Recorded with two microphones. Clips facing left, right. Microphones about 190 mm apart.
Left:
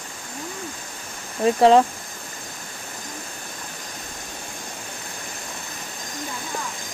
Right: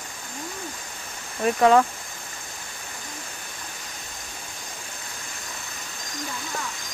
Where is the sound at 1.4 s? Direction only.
25° left (ahead or behind).